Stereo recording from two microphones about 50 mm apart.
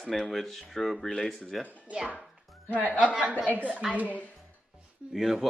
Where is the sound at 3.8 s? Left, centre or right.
Centre.